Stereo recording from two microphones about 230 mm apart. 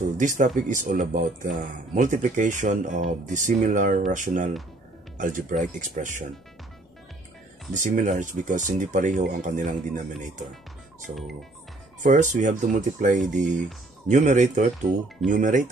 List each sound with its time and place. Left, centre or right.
0.2 s speech: right
5.1 s music: right
5.6 s speech: right
7.7 s speech: right
12.0 s speech: right